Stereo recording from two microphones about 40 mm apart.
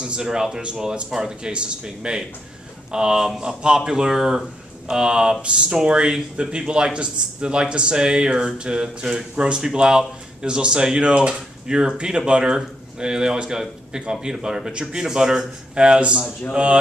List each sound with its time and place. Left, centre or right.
0.0 s speech: right
15.7 s speech: right